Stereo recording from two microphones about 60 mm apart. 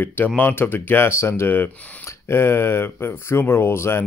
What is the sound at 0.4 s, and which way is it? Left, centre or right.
A man's voice, left.